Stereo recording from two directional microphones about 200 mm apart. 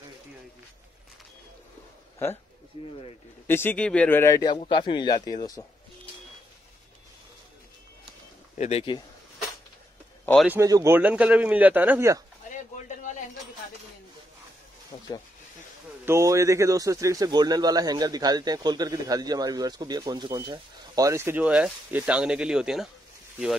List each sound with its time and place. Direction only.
3.4 s speech: 10° left (ahead or behind)
8.5 s speech: 30° left (ahead or behind)
10.4 s speech: 10° right (ahead or behind)
12.4 s a sound: 40° left (ahead or behind)
14.9 s snake: 15° left (ahead or behind)
16.1 s speech: 15° right (ahead or behind)